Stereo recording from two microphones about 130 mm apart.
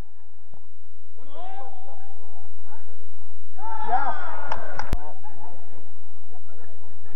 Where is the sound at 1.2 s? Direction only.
40° right (ahead or behind).